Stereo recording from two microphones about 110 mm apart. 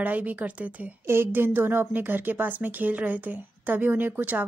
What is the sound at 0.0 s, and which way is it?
A woman's voice, 15° right (ahead or behind).